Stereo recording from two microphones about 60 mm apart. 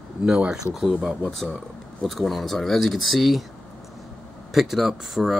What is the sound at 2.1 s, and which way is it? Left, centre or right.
Speech, centre.